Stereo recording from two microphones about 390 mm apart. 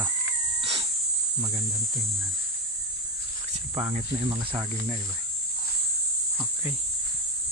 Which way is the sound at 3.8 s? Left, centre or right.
Centre.